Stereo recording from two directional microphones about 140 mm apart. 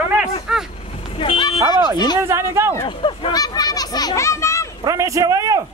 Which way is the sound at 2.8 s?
40° left (ahead or behind).